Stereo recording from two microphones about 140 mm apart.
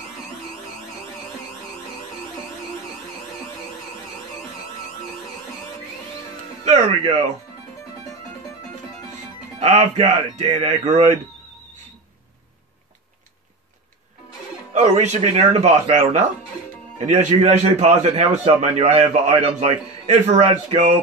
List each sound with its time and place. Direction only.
6.6 s speech: 55° right (ahead or behind)
9.6 s a man's voice: 50° right (ahead or behind)
14.7 s a man's voice: 55° right (ahead or behind)